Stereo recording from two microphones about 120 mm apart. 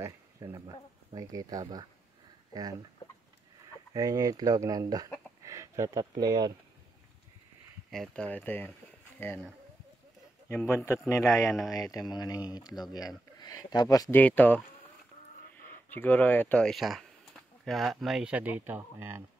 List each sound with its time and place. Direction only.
0.0 s a sound: 25° right (ahead or behind)
1.1 s speech: 30° right (ahead or behind)
3.9 s speech: 30° right (ahead or behind)
7.9 s speech: centre (ahead or behind)
8.2 s speech: 15° left (ahead or behind)
10.9 s a man's voice: 25° left (ahead or behind)
11.5 s speech: centre (ahead or behind)
11.8 s speech: 30° left (ahead or behind)
14.1 s speech: 15° left (ahead or behind)
15.9 s speech: 15° left (ahead or behind); by 19.2 s 20° right (ahead or behind)